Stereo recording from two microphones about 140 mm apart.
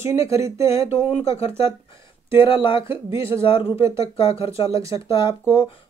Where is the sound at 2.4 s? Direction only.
35° left (ahead or behind).